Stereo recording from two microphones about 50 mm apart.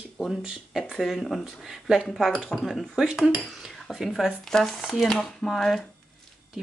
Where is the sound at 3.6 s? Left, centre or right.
Centre.